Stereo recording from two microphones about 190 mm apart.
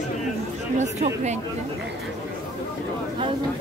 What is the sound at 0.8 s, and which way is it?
Speech, 35° right (ahead or behind).